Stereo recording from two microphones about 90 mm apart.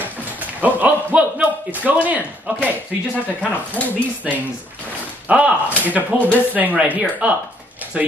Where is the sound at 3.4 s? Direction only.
15° left (ahead or behind).